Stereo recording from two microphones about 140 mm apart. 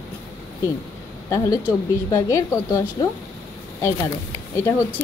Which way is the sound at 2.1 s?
20° left (ahead or behind).